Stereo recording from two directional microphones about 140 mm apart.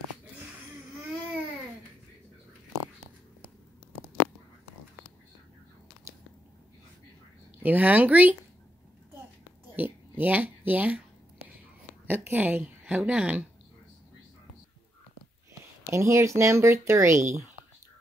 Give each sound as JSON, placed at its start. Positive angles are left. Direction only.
{"t": 7.6, "sound": "a woman's voice", "side_deg": -10}
{"t": 9.8, "sound": "speech", "side_deg": -15}
{"t": 12.1, "sound": "a woman's voice", "side_deg": -10}
{"t": 15.9, "sound": "speech", "side_deg": -20}